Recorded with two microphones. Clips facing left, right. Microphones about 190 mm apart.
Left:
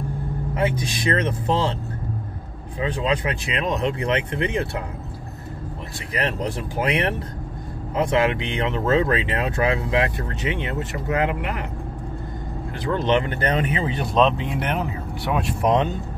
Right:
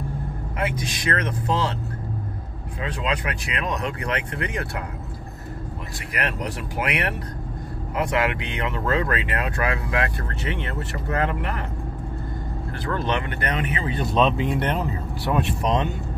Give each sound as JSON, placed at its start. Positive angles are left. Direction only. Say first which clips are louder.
{"t": 0.6, "sound": "speech", "louder": "left 3 dB", "side_deg": 30}
{"t": 2.8, "sound": "speech", "louder": "left 4 dB", "side_deg": 25}
{"t": 6.1, "sound": "speech", "louder": "left 3 dB", "side_deg": 30}
{"t": 12.8, "sound": "speech", "louder": "left 5 dB", "side_deg": 20}
{"t": 14.1, "sound": "speech", "louder": "left 1 dB", "side_deg": 0}